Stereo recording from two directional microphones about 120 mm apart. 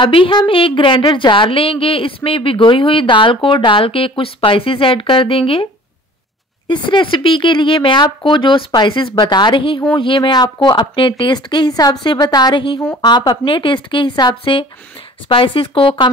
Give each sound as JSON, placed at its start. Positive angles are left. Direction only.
{"t": 0.0, "sound": "a woman's voice", "side_deg": 45}
{"t": 6.7, "sound": "a woman's voice", "side_deg": 45}